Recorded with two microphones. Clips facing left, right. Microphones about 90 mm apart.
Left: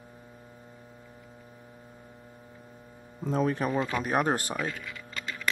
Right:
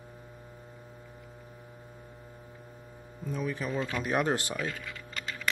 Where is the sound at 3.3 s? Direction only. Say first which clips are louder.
Left 7 dB; 65° left (ahead or behind).